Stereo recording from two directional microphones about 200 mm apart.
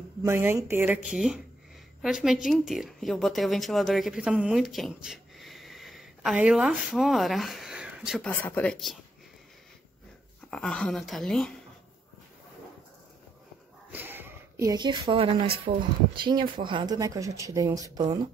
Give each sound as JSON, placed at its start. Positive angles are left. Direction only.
{"t": 0.2, "sound": "speech", "side_deg": -10}
{"t": 8.3, "sound": "speech", "side_deg": 10}
{"t": 10.5, "sound": "a woman's voice", "side_deg": 5}
{"t": 13.9, "sound": "speech", "side_deg": -10}